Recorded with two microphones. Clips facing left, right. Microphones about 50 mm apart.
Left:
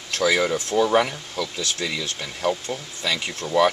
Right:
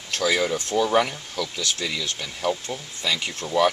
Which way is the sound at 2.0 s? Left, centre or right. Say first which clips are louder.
Left 1 dB; left.